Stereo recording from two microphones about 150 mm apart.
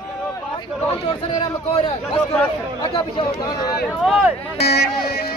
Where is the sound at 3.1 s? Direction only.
25° left (ahead or behind).